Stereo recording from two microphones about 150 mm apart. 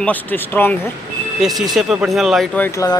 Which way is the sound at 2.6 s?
20° left (ahead or behind).